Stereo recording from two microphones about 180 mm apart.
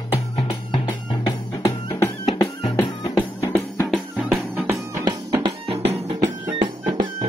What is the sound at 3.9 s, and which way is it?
Music, 5° right (ahead or behind).